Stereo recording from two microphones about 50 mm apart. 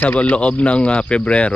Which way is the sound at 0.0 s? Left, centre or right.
Left.